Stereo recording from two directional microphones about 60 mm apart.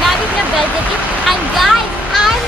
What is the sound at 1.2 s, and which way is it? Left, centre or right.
Speech, centre.